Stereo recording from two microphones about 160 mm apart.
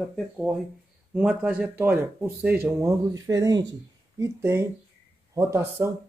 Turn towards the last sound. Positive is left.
turn(degrees=-15)  # may be behind; listen again after turning